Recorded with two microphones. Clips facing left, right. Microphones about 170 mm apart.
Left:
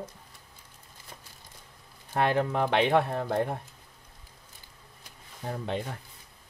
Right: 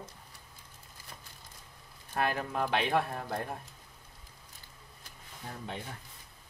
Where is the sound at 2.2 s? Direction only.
70° left (ahead or behind).